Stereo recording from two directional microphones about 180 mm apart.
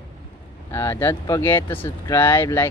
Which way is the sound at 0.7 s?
15° left (ahead or behind).